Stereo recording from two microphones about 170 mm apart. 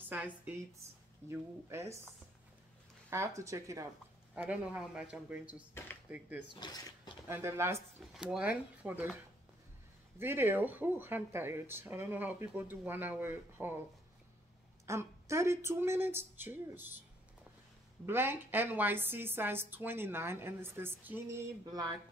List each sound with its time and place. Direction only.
0.1 s speech: 10° right (ahead or behind)
3.1 s speech: 15° right (ahead or behind)
4.4 s speech: 5° right (ahead or behind)
6.5 s speech: 25° left (ahead or behind)
7.2 s speech: 15° right (ahead or behind)
8.0 s speech: centre (ahead or behind)
10.1 s speech: 15° right (ahead or behind)
14.9 s speech: 15° right (ahead or behind)
18.0 s speech: 15° right (ahead or behind)
21.6 s speech: 25° right (ahead or behind)